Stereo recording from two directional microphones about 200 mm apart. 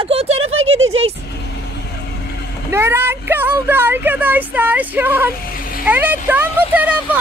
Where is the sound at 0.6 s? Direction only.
90° right.